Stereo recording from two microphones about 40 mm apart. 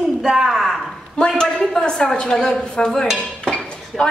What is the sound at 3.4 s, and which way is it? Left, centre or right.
Dishes, centre.